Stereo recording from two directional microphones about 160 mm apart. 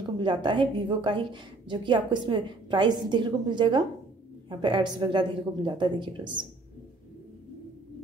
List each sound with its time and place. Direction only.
0.2 s a woman's voice: 30° right (ahead or behind)